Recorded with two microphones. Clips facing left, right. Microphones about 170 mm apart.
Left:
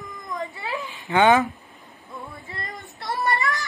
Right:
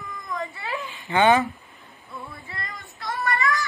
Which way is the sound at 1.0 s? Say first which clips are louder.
Left 1 dB; 15° left (ahead or behind).